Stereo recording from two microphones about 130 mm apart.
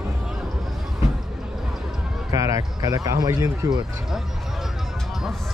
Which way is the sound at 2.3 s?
25° right (ahead or behind).